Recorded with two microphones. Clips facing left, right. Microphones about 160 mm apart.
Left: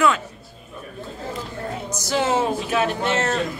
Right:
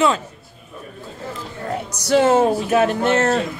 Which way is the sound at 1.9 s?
65° right (ahead or behind).